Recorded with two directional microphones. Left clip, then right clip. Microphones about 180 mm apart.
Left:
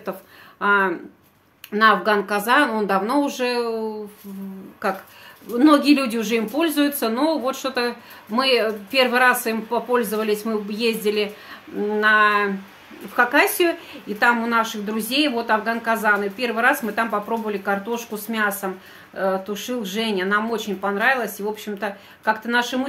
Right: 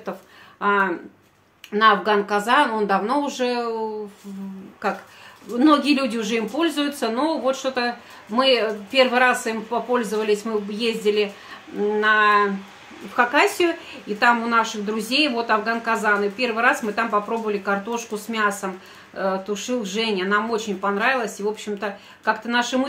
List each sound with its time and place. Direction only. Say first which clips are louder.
0.6 s speech: left 1 dB; 20° left (ahead or behind)